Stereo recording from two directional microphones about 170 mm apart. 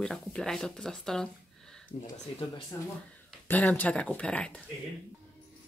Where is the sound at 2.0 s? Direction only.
25° left (ahead or behind).